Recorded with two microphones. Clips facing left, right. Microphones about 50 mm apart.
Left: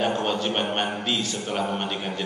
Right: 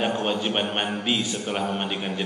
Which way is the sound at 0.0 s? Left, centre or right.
Centre.